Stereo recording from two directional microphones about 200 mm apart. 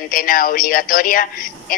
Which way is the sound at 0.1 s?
45° left (ahead or behind).